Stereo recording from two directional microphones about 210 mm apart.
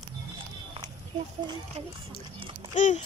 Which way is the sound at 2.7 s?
35° left (ahead or behind).